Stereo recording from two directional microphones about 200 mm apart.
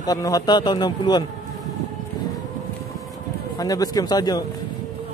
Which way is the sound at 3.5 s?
20° left (ahead or behind).